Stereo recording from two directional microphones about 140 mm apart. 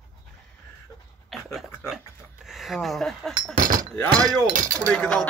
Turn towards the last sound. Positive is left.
turn(degrees=5)  # may be behind; listen again after turning